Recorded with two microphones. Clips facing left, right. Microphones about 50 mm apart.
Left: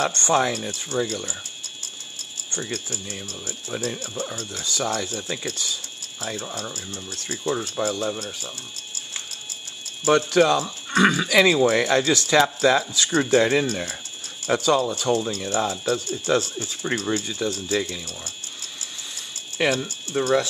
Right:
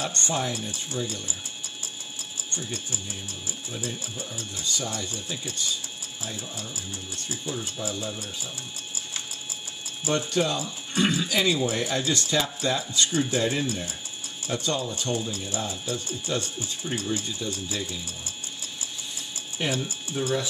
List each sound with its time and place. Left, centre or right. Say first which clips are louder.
0.0 s speech: left 8 dB; left
2.5 s speech: left 5 dB; left
3.4 s speech: left 6 dB; left
8.2 s speech: left 3 dB; left
10.0 s speech: left 8 dB; left
15.2 s speech: left 7 dB; left
19.6 s speech: left 7 dB; left